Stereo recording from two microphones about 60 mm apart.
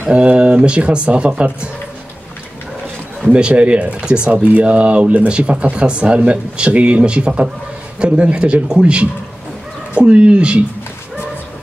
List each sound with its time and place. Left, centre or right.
0.1 s speech: centre
3.3 s speech: centre